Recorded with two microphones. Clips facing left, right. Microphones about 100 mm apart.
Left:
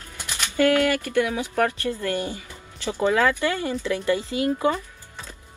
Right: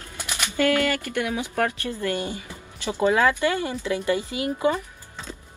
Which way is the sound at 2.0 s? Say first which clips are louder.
Even; 20° right (ahead or behind).